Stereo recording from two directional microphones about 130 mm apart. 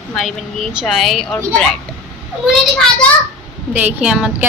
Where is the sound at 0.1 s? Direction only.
Centre (ahead or behind).